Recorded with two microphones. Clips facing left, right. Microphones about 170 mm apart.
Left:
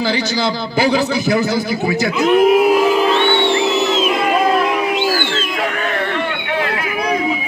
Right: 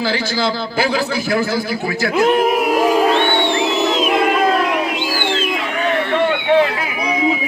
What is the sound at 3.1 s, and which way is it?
Music, 50° right (ahead or behind).